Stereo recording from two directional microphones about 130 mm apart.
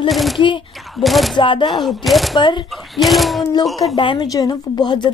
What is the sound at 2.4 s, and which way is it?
Speech, 35° left (ahead or behind).